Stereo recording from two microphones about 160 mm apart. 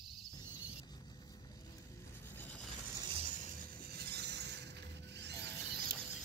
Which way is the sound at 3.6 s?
85° right.